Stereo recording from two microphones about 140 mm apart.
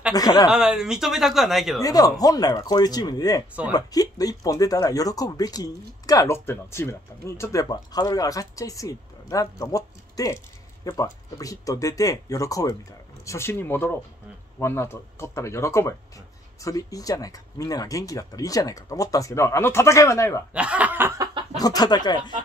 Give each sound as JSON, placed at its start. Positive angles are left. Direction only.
{"t": 0.1, "sound": "speech", "side_deg": 25}
{"t": 0.5, "sound": "speech", "side_deg": -5}
{"t": 1.8, "sound": "speech", "side_deg": 25}
{"t": 20.5, "sound": "speech", "side_deg": -10}
{"t": 21.5, "sound": "speech", "side_deg": 25}